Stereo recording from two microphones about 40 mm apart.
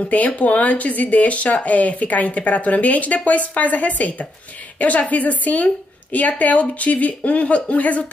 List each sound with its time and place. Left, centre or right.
0.4 s speech: left